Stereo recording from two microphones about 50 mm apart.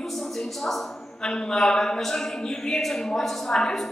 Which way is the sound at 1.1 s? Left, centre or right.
Centre.